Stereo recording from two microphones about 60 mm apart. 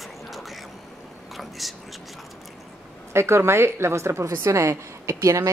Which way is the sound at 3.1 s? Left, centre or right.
Right.